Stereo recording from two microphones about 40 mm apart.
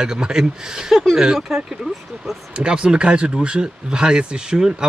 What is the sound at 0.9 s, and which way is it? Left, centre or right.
Speech, centre.